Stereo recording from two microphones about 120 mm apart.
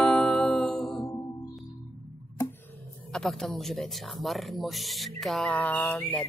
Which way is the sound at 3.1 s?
5° left (ahead or behind).